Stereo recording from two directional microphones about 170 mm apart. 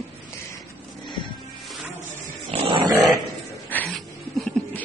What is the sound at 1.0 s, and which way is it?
Music, 25° left (ahead or behind).